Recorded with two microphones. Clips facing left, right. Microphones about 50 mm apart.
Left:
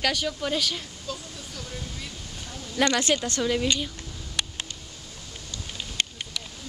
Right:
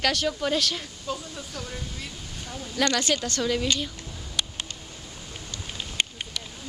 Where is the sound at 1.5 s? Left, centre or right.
Centre.